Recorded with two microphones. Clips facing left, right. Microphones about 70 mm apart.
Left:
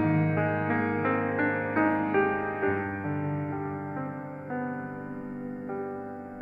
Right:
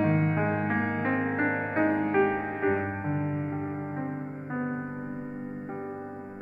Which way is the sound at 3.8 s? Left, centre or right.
Right.